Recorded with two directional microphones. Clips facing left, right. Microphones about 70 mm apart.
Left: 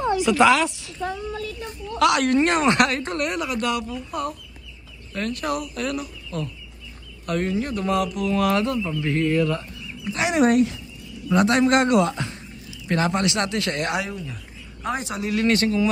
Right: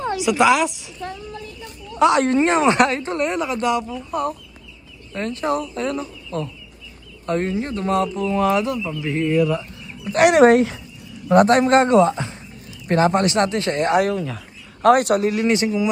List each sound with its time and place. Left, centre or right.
0.2 s a woman's voice: centre
2.0 s a woman's voice: right
4.1 s speech: right
8.5 s speech: centre
9.1 s a woman's voice: centre
10.1 s speech: right
11.2 s speech: right
12.8 s speech: right
14.0 s speech: right
15.3 s a woman's voice: centre